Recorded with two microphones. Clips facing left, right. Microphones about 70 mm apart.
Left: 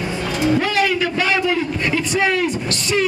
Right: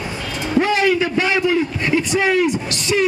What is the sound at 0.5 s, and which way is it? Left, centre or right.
A man's voice, right.